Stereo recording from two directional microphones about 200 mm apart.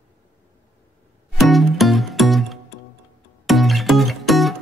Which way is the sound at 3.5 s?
Centre (ahead or behind).